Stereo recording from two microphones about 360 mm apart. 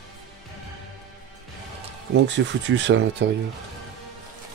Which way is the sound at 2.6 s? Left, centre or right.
Right.